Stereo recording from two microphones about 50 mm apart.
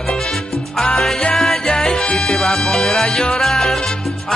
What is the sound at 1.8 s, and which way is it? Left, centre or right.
Music, centre.